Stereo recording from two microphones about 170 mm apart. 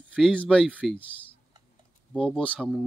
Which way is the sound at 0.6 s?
5° right (ahead or behind).